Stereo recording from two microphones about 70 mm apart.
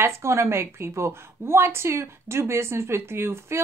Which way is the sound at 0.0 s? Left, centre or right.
Right.